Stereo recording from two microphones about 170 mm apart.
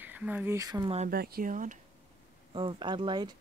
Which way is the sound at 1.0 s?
60° right (ahead or behind).